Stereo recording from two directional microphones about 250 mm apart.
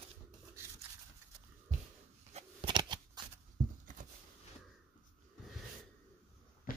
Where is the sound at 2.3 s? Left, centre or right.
Right.